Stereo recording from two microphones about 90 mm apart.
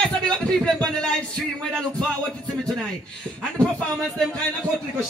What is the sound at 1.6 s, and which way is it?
Music, 5° left (ahead or behind).